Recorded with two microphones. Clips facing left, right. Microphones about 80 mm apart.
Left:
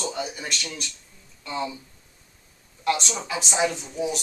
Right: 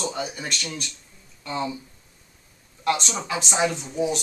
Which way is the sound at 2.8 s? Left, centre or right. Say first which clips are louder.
Right 1 dB; centre.